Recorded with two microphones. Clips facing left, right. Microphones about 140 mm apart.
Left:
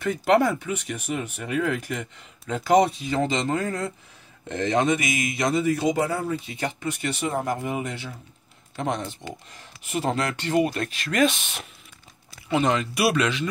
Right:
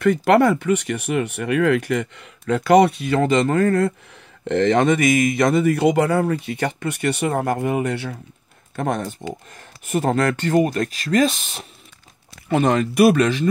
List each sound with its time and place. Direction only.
0.0 s speech: 65° right (ahead or behind)
8.7 s speech: 50° right (ahead or behind)
12.4 s speech: 50° right (ahead or behind)